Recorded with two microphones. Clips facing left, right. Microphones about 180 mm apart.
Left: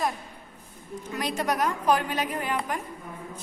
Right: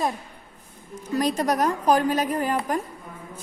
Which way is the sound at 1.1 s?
40° right (ahead or behind).